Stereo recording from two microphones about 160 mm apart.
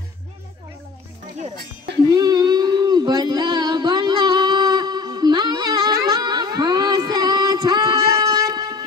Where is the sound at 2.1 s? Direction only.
25° right (ahead or behind).